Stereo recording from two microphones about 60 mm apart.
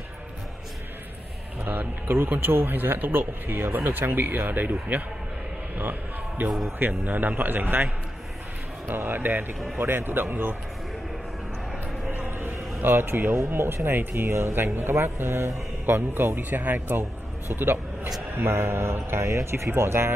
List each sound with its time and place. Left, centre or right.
1.6 s a man's voice: right
12.1 s a sound: right
12.8 s speech: right